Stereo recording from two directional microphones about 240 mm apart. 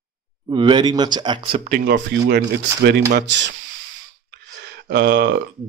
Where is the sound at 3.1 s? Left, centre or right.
Right.